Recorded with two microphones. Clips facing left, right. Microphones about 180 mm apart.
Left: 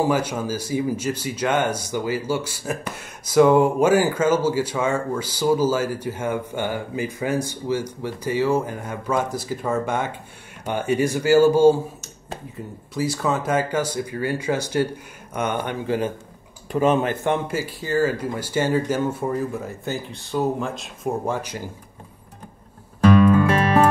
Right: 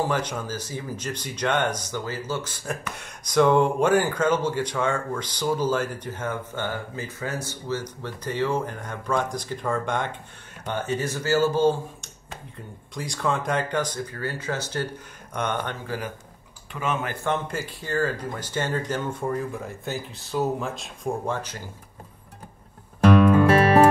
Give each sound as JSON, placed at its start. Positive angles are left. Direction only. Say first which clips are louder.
{"t": 0.0, "sound": "a man's voice", "louder": "left 5 dB", "side_deg": 10}
{"t": 16.7, "sound": "speech", "louder": "left 9 dB", "side_deg": 35}
{"t": 17.1, "sound": "a man's voice", "louder": "left 4 dB", "side_deg": 20}
{"t": 17.5, "sound": "a man's voice", "louder": "left 5 dB", "side_deg": 5}
{"t": 21.3, "sound": "a man's voice", "louder": "left 3 dB", "side_deg": 10}